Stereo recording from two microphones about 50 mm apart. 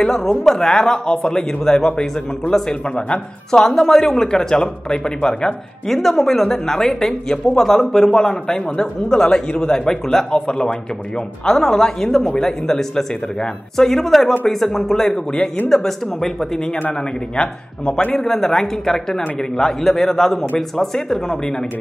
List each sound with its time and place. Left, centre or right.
0.0 s speech: centre
1.9 s a man's voice: left
5.9 s speech: centre